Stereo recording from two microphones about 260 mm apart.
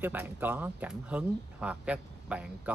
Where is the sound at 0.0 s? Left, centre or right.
Centre.